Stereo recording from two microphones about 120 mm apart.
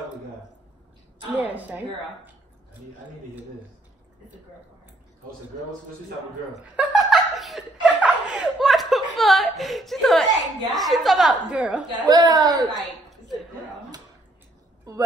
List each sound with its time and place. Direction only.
1.3 s a woman's voice: 15° right (ahead or behind)
6.6 s laughter: 10° right (ahead or behind)
7.8 s a woman's voice: centre (ahead or behind)
12.0 s speech: 35° right (ahead or behind)
12.7 s a sound: centre (ahead or behind)